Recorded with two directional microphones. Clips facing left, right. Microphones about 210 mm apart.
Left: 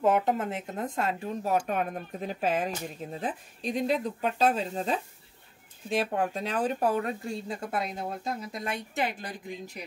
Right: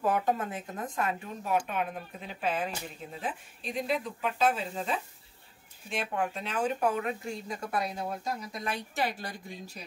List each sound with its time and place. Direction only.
0.0 s speech: 20° left (ahead or behind)
1.4 s speech: 40° left (ahead or behind); by 9.1 s 20° left (ahead or behind)